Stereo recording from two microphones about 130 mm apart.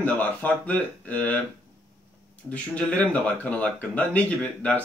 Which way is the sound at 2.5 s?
10° left (ahead or behind).